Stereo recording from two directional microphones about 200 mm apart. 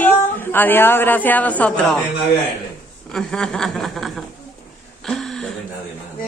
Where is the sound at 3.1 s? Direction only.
5° left (ahead or behind).